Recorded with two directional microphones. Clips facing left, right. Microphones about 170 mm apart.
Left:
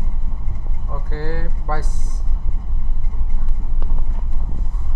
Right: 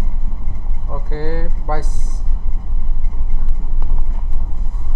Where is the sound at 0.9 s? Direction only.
15° right (ahead or behind).